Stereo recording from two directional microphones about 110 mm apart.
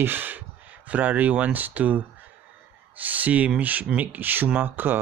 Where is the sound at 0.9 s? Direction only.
15° right (ahead or behind).